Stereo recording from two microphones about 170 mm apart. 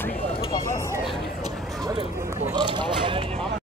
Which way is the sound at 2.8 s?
30° right (ahead or behind).